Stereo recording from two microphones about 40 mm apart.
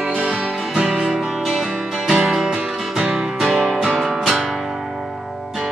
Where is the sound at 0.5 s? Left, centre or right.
Centre.